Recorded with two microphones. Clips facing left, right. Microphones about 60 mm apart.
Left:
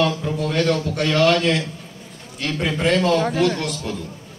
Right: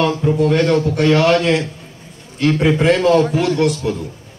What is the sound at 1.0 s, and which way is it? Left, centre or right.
Speech, centre.